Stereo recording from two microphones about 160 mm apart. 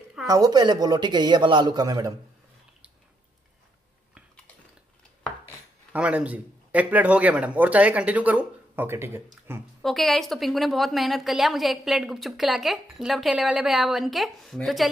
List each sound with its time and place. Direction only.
0.3 s a man's voice: 25° right (ahead or behind)
5.9 s speech: 10° right (ahead or behind)
9.8 s a woman's voice: centre (ahead or behind)